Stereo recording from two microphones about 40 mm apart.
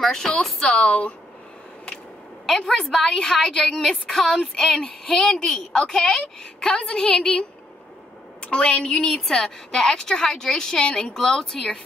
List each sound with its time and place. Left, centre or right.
0.0 s a woman's voice: centre
0.8 s speech: left
2.4 s a woman's voice: centre